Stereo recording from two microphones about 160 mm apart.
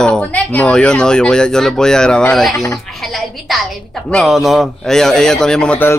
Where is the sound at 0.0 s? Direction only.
5° left (ahead or behind).